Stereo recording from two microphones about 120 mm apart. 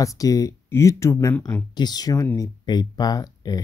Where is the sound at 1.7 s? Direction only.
35° left (ahead or behind).